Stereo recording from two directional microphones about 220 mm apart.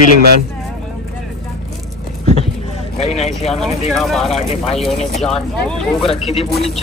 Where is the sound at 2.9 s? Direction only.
30° left (ahead or behind).